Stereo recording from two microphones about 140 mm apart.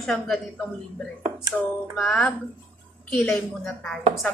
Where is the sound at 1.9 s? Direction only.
5° left (ahead or behind).